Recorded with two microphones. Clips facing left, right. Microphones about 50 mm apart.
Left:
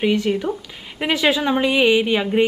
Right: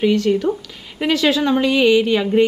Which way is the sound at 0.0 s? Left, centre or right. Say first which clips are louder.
Right 3 dB; centre.